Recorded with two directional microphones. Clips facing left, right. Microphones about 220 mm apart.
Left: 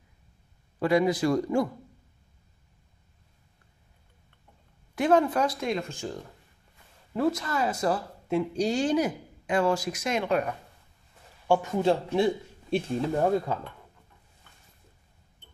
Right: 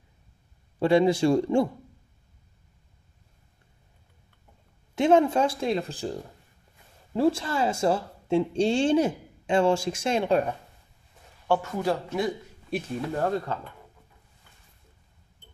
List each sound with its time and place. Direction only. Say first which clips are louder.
0.7 s speech: right 3 dB; 30° right (ahead or behind)
4.9 s speech: right 3 dB; 25° right (ahead or behind)
7.2 s speech: right 3 dB; 30° right (ahead or behind)
11.4 s a man's voice: left 2 dB; 15° left (ahead or behind)
13.2 s speech: left 2 dB; 15° left (ahead or behind)